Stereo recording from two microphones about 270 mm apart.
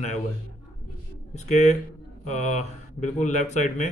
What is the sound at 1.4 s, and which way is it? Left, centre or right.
A man's voice, left.